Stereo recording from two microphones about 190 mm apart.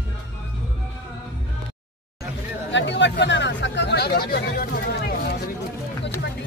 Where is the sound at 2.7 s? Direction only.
70° left (ahead or behind).